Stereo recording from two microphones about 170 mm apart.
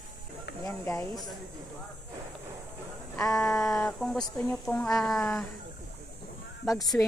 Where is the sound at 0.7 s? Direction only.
20° left (ahead or behind).